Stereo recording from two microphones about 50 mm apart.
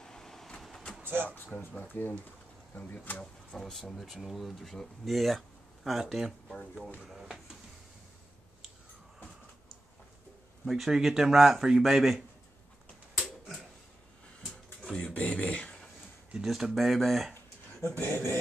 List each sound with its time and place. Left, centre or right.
0.0 s vehicle: centre
1.0 s drawer open or close: right
1.3 s speech: left
2.7 s speech: left
3.5 s speech: centre
3.9 s speech: centre
10.6 s speech: centre
15.0 s speech: left
16.3 s speech: centre
17.9 s speech: left